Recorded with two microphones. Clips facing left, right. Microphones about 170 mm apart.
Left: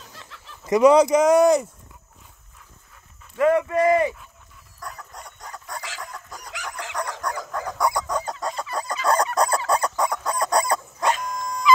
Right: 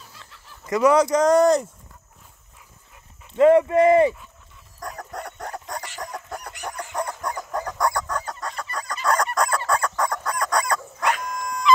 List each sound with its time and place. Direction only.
0.7 s speech: 20° left (ahead or behind)
3.3 s speech: 25° right (ahead or behind)
4.7 s dog: 45° right (ahead or behind)
5.1 s bow-wow: 65° right (ahead or behind)
6.5 s chicken: 90° left
7.8 s chicken: 15° left (ahead or behind); by 9.6 s 30° left (ahead or behind)
9.7 s chicken: 15° left (ahead or behind)
10.2 s chicken: 30° left (ahead or behind)